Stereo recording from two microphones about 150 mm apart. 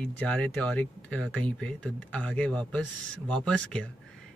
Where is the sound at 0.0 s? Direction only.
5° left (ahead or behind).